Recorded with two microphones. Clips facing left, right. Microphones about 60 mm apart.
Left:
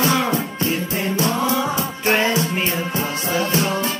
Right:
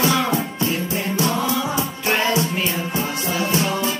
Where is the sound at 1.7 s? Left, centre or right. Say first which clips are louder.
Left 2 dB; left.